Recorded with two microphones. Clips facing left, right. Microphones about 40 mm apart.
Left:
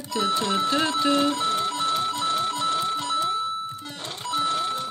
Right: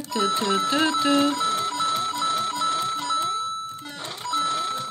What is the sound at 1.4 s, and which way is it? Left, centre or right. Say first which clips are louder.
Telephone bell ringing: even; centre.